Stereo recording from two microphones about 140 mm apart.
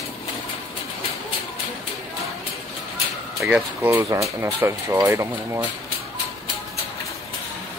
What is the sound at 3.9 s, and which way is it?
Speech, 20° right (ahead or behind).